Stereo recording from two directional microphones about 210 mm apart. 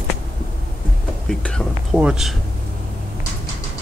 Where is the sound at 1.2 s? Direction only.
5° left (ahead or behind).